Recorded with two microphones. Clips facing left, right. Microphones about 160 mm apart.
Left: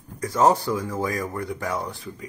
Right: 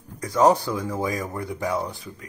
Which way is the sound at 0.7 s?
20° right (ahead or behind).